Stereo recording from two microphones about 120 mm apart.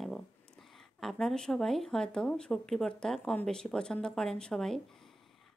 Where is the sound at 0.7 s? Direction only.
5° left (ahead or behind).